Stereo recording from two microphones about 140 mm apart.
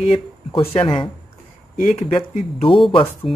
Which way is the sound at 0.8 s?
40° left (ahead or behind).